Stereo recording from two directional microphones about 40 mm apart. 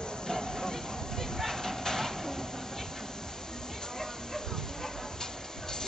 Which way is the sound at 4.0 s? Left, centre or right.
Centre.